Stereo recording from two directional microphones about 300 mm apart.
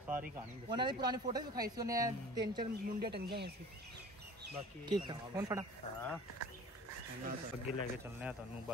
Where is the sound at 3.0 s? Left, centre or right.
Right.